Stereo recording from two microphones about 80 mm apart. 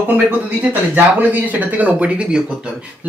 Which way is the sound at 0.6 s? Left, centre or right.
Right.